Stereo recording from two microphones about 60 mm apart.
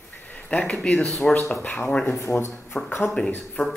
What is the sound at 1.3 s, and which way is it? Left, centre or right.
Speech, left.